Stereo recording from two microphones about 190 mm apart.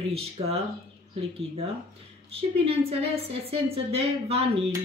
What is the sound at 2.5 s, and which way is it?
A woman's voice, 30° right (ahead or behind).